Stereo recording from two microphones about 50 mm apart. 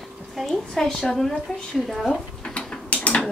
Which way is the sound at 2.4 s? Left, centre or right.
Centre.